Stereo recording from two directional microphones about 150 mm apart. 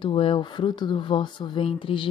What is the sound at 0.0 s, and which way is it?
Music, 35° left (ahead or behind).